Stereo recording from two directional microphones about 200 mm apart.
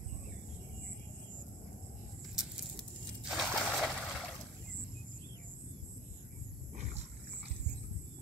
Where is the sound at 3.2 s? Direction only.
Centre (ahead or behind).